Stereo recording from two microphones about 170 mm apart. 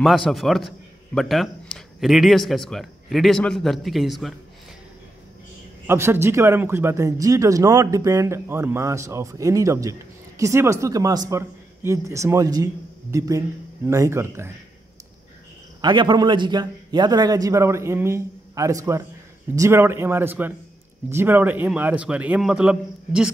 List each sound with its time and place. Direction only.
0.0 s a man's voice: centre (ahead or behind)
5.9 s speech: 15° right (ahead or behind)
15.8 s a man's voice: 25° right (ahead or behind); by 23.3 s 5° right (ahead or behind)